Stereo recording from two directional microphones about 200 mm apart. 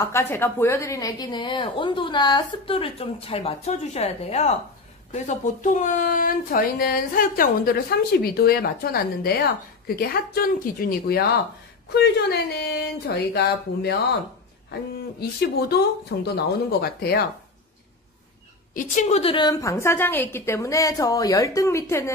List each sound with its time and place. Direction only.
0.0 s a woman's voice: 15° left (ahead or behind); by 13.9 s 55° left (ahead or behind)
15.7 s speech: 55° left (ahead or behind)
18.7 s a woman's voice: 40° left (ahead or behind); by 22.1 s 15° left (ahead or behind)